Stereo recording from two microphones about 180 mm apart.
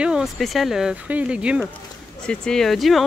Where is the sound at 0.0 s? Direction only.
5° right (ahead or behind).